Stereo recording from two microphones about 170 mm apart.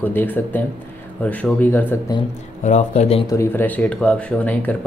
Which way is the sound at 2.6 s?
45° left (ahead or behind).